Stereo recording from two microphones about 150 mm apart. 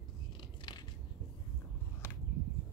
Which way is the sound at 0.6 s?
30° left (ahead or behind).